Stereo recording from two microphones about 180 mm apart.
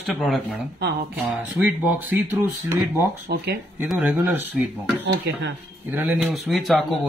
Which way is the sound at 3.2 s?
65° right (ahead or behind).